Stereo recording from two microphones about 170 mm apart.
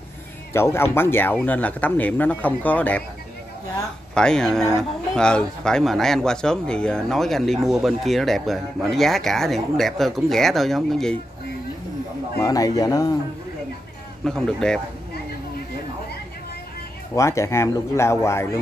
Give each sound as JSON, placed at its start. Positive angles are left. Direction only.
{"t": 0.5, "sound": "speech", "side_deg": 15}
{"t": 4.1, "sound": "speech", "side_deg": 5}
{"t": 12.4, "sound": "speech", "side_deg": 20}
{"t": 14.2, "sound": "speech", "side_deg": 5}
{"t": 17.1, "sound": "speech", "side_deg": 15}